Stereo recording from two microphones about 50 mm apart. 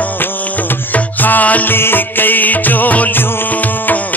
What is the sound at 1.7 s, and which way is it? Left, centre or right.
Music, left.